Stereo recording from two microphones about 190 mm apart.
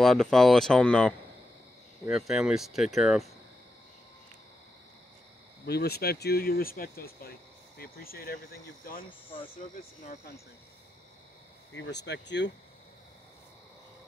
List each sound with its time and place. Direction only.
0.0 s speech: centre (ahead or behind)
5.7 s speech: 55° left (ahead or behind)
9.6 s speech: 45° left (ahead or behind)
11.7 s speech: 65° left (ahead or behind)